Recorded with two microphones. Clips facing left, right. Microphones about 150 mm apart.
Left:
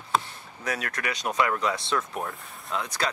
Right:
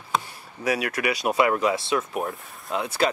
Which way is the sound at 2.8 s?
30° right (ahead or behind).